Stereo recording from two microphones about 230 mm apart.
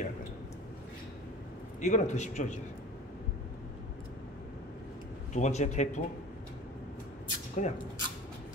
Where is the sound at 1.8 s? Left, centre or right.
Left.